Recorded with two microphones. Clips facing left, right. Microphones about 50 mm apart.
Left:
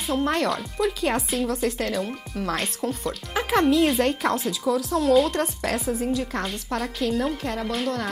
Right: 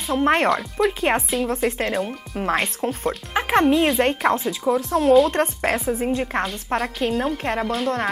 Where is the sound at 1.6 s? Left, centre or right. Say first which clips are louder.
Right 3 dB; right.